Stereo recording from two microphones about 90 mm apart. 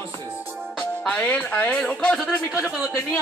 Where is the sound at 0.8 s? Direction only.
10° left (ahead or behind).